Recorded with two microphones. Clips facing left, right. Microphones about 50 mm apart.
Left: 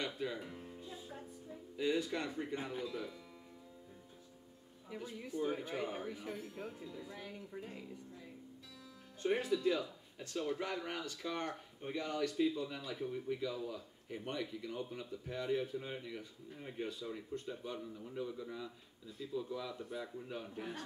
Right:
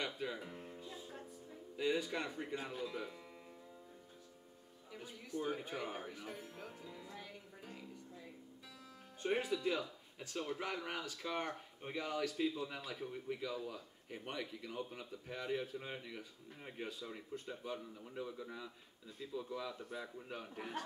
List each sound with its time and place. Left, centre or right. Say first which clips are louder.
0.0 s speech: left 2 dB; centre
0.8 s music: left 1 dB; centre
1.8 s a man's voice: left 1 dB; centre
2.5 s speech: left 2 dB; centre
2.8 s a man's voice: left 1 dB; centre
5.9 s a man's voice: left 3 dB; centre
6.3 s speech: left 4 dB; right
7.1 s speech: left 4 dB; centre
9.2 s a man's voice: left 3 dB; centre